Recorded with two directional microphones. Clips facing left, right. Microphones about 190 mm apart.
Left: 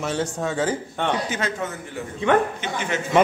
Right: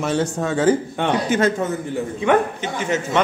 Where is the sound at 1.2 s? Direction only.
50° right (ahead or behind).